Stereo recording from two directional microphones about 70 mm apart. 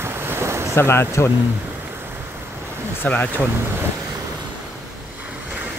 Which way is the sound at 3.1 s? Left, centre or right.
Left.